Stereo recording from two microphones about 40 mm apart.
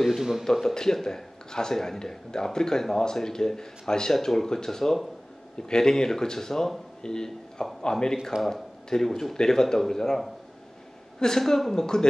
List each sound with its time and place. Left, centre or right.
0.2 s speech: centre
0.5 s a man's voice: centre